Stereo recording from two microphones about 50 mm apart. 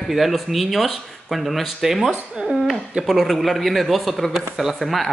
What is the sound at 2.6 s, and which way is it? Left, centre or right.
A man's voice, centre.